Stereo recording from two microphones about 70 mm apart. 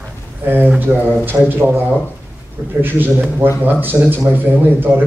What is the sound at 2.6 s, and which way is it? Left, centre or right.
Speech, right.